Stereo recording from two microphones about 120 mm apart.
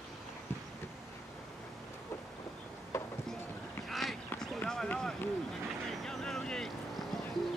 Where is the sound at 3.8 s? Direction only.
Centre (ahead or behind).